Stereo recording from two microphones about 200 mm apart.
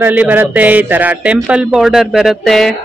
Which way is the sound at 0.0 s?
10° right (ahead or behind).